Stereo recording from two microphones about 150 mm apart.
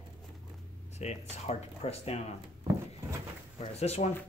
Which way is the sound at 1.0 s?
50° left (ahead or behind).